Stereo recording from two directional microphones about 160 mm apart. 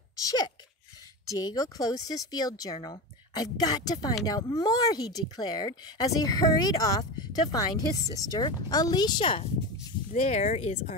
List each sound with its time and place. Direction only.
0.2 s speech: 25° left (ahead or behind)
10.1 s speech: 45° left (ahead or behind)